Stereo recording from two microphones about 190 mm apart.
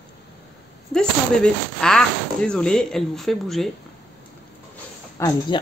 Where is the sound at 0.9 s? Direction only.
5° left (ahead or behind).